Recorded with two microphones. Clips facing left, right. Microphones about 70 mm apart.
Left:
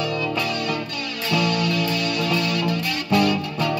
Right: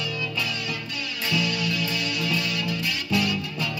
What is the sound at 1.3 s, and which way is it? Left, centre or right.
Music, left.